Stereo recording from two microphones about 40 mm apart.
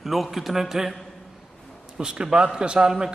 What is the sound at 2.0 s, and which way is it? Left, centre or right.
Speech, right.